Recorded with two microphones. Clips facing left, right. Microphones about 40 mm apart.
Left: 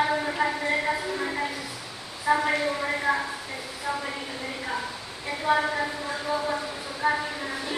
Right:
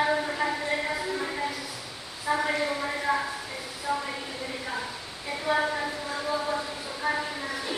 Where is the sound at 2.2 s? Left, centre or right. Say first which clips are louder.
Left 4 dB; centre.